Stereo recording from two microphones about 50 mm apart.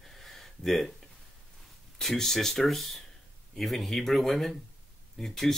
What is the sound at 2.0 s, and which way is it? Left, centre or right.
Speech, centre.